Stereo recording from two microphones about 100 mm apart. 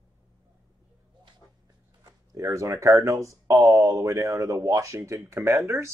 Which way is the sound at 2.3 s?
35° right (ahead or behind).